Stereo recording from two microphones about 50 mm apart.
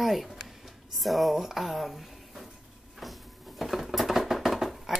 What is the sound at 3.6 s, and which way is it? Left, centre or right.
Patter, centre.